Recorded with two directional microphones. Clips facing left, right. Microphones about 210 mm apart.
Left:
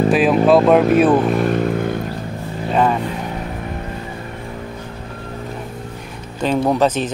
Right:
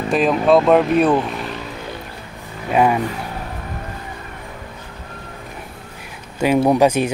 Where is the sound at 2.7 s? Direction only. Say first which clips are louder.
Right 1 dB; 10° right (ahead or behind).